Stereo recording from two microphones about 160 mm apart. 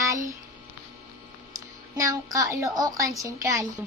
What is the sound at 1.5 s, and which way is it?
A woman's voice, 20° right (ahead or behind).